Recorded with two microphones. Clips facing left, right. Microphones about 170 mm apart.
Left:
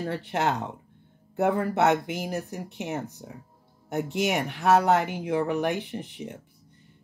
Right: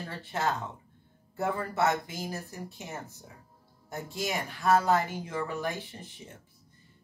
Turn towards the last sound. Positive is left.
turn(degrees=70)  # may be behind; listen again after turning